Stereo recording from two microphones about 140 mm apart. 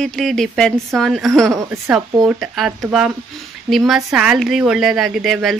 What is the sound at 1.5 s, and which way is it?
Speech, 20° right (ahead or behind).